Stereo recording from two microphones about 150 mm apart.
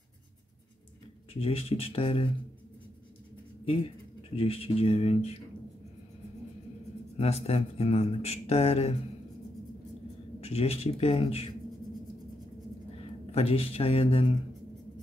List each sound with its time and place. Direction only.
1.3 s speech: 40° left (ahead or behind)
4.4 s speech: 40° left (ahead or behind)
7.2 s speech: 45° left (ahead or behind)
10.4 s speech: 40° left (ahead or behind)
13.3 s speech: 40° left (ahead or behind)